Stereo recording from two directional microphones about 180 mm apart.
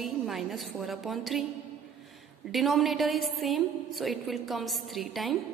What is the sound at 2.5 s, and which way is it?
A woman's voice, centre (ahead or behind).